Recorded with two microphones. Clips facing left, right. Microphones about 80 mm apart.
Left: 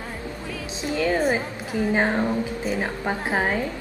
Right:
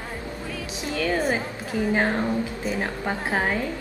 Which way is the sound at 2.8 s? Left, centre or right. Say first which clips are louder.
Left 1 dB; centre.